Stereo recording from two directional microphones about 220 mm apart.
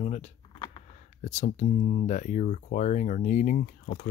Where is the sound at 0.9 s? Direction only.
35° left (ahead or behind).